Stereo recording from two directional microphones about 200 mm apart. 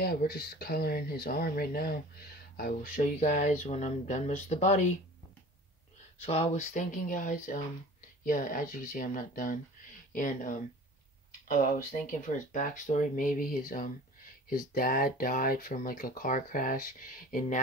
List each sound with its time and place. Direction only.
0.0 s speech: 50° left (ahead or behind); by 4.8 s 35° left (ahead or behind)
6.2 s speech: 30° left (ahead or behind)